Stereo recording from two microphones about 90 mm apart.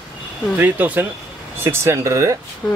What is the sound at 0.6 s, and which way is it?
Speech, 20° right (ahead or behind).